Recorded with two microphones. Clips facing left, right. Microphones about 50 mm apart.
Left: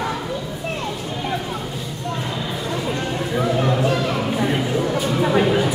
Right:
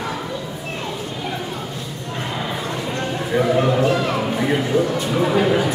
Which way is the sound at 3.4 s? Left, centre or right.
Centre.